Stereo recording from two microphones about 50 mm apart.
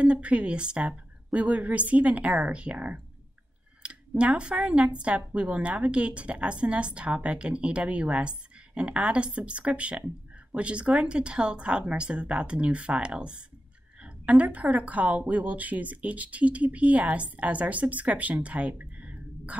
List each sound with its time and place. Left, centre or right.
0.0 s speech: right